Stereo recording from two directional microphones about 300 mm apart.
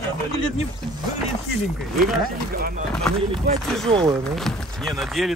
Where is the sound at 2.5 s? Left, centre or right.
Right.